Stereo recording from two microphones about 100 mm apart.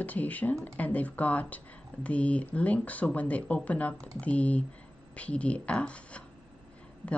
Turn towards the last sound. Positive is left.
turn(degrees=10)  # may be behind; listen again after turning